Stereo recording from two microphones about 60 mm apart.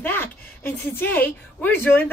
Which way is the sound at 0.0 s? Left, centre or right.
Left.